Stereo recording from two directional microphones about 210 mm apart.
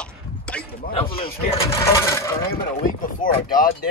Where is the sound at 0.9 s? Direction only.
25° left (ahead or behind).